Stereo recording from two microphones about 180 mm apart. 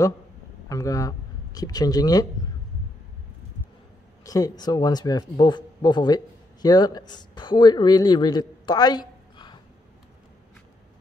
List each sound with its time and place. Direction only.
0.7 s speech: 20° left (ahead or behind)
4.2 s speech: 20° left (ahead or behind)